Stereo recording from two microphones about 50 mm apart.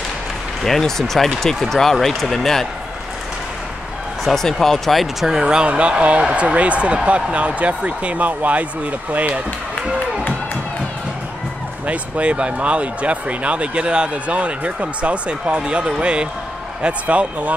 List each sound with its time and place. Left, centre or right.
0.7 s speech: centre
4.2 s speech: centre
5.2 s speech: centre; by 8.6 s right
11.8 s speech: right